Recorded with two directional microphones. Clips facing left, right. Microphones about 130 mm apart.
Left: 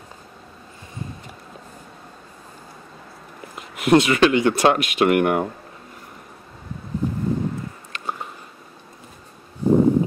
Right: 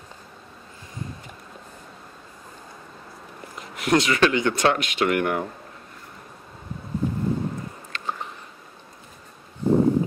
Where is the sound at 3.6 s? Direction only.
15° left (ahead or behind).